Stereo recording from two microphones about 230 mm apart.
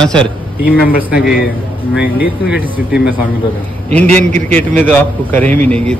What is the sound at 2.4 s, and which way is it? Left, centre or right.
Speech, centre.